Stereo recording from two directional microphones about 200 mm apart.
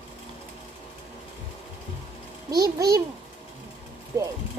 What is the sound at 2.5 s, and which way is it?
Speech, 20° right (ahead or behind).